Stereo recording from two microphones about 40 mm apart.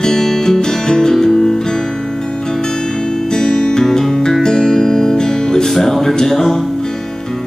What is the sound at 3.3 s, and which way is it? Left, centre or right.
Music, centre.